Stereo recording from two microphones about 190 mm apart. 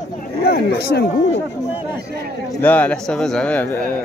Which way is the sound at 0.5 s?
55° left (ahead or behind).